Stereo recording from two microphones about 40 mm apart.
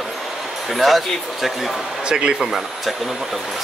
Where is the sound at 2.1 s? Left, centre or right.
Centre.